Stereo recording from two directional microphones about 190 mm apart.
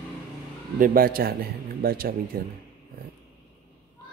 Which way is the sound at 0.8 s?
50° right (ahead or behind).